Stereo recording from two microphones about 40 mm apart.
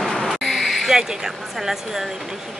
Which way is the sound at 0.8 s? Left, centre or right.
Centre.